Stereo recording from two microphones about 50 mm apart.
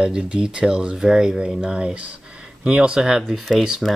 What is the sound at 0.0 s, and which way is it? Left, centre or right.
Speech, centre.